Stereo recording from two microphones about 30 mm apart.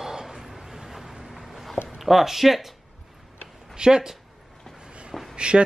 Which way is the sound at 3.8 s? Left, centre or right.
Right.